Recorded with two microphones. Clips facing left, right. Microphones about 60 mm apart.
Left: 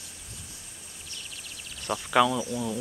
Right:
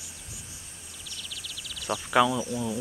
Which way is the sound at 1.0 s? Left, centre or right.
Left.